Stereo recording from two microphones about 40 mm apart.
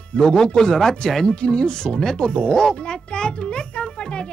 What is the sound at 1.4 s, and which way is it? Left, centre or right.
Speech, left.